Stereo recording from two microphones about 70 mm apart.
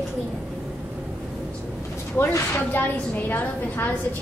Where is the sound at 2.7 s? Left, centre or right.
Left.